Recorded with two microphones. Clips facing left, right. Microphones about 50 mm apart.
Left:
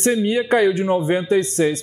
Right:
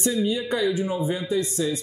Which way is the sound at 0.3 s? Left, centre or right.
Left.